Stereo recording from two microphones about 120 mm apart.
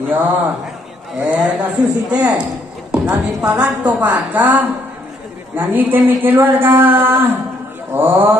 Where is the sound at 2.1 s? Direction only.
10° right (ahead or behind).